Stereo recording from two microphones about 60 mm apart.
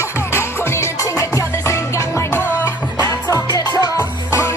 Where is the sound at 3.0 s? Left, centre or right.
Left.